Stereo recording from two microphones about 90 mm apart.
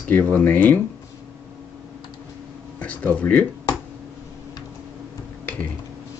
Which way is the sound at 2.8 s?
15° left (ahead or behind).